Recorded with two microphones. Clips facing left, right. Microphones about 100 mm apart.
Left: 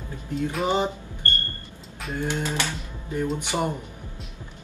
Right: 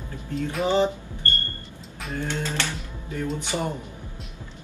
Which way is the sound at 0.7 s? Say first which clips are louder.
Right 3 dB; 15° left (ahead or behind).